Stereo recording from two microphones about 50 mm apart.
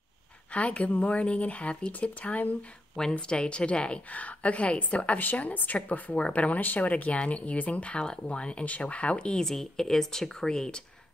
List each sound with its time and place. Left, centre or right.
0.5 s speech: left
3.0 s speech: centre
9.5 s speech: centre